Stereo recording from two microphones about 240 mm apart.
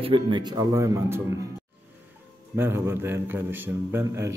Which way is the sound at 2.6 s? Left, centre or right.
Centre.